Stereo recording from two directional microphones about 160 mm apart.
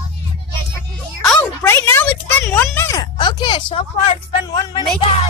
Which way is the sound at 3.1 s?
30° left (ahead or behind).